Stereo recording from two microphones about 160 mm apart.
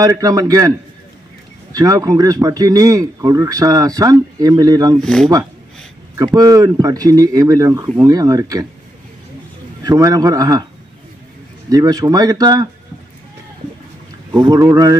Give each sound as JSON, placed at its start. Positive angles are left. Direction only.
{"t": 0.0, "sound": "speech", "side_deg": -20}
{"t": 5.0, "sound": "speech", "side_deg": 0}
{"t": 6.1, "sound": "speech", "side_deg": -20}
{"t": 9.8, "sound": "speech", "side_deg": -20}
{"t": 11.7, "sound": "speech", "side_deg": -20}
{"t": 14.4, "sound": "speech", "side_deg": -20}